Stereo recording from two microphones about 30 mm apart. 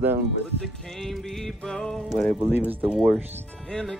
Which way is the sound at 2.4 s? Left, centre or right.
Right.